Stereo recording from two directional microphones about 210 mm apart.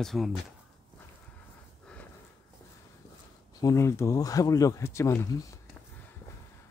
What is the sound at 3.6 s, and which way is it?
Speech, 15° left (ahead or behind).